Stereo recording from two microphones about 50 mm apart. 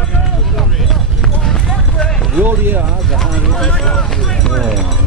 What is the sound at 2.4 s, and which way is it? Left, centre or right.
Speech, right.